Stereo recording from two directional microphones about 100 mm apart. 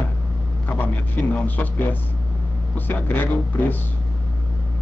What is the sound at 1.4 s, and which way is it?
Speech, 15° left (ahead or behind).